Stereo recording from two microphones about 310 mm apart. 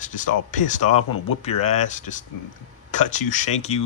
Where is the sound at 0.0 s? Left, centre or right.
Left.